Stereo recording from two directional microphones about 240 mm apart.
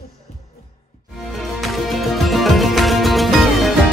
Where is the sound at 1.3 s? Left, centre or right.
Centre.